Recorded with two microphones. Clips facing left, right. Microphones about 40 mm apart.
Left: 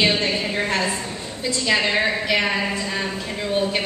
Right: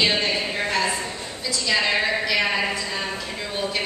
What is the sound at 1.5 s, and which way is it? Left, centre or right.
Speech, left.